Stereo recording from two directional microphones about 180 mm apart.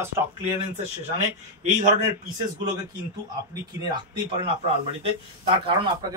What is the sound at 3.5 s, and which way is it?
Speech, 25° right (ahead or behind).